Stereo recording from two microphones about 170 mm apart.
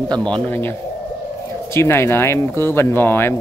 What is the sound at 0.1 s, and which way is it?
Speech, 5° left (ahead or behind).